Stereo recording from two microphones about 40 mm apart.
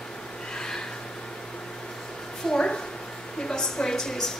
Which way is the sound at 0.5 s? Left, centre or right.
Centre.